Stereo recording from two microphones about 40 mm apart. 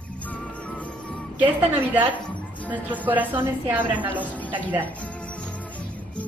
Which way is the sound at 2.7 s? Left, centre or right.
Right.